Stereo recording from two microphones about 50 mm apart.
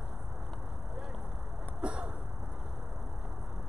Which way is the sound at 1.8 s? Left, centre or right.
Right.